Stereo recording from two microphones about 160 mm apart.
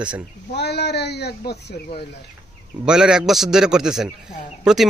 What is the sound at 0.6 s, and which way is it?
Speech, 90° left.